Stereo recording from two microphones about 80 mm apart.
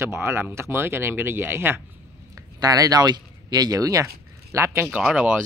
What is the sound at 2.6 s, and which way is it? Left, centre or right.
Speech, right.